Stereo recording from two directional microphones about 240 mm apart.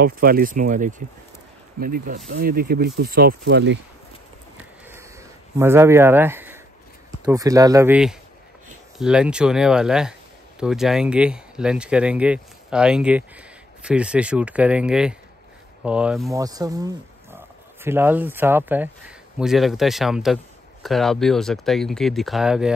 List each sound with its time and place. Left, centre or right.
0.0 s speech: right
5.6 s speech: centre